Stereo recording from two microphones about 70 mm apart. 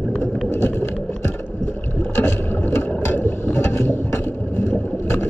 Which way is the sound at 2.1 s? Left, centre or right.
Left.